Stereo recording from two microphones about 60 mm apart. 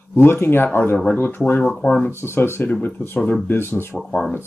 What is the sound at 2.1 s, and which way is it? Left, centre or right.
Speech, left.